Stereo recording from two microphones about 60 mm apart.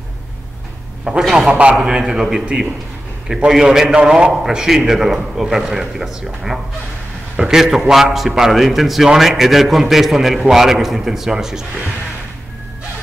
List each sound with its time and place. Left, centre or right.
1.1 s a man's voice: centre
1.8 s a man's voice: centre
7.3 s a man's voice: centre